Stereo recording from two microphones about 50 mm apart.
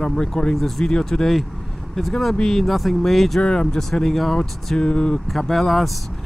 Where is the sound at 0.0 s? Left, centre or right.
Centre.